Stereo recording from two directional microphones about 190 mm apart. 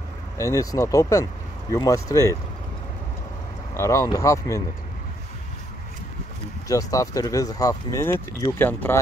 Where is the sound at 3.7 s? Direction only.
15° left (ahead or behind).